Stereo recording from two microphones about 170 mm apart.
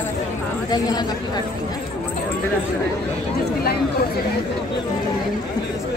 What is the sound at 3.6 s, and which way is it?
Speech, 65° left (ahead or behind).